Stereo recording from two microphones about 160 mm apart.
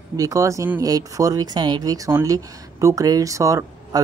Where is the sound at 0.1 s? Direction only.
20° right (ahead or behind).